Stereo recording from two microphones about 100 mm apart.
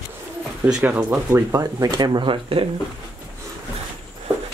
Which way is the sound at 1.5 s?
35° right (ahead or behind).